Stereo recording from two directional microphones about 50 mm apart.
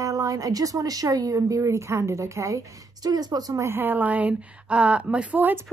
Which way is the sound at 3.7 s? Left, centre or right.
Right.